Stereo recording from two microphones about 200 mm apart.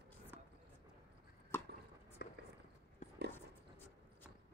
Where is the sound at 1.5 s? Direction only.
10° left (ahead or behind).